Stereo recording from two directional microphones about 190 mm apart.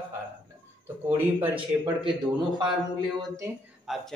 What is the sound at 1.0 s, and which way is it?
Speech, 10° right (ahead or behind).